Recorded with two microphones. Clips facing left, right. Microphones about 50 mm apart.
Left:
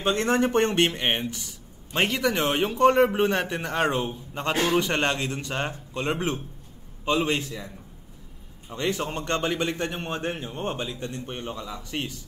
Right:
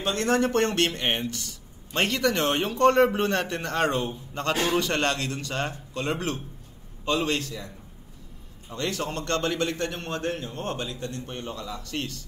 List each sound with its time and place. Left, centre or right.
0.0 s a man's voice: left